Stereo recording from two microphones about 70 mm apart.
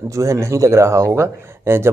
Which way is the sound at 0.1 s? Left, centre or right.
Right.